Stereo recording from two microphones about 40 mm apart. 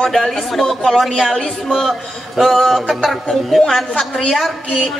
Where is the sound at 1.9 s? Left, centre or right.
Centre.